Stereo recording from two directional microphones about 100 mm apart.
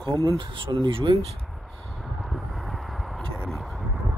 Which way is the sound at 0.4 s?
50° right (ahead or behind).